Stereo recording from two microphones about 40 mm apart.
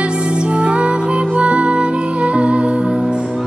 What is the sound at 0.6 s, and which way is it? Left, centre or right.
Music, right.